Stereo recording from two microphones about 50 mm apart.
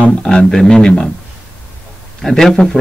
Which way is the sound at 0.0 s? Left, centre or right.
Centre.